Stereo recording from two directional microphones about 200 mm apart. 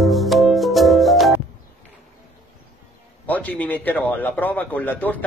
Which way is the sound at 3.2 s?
10° left (ahead or behind).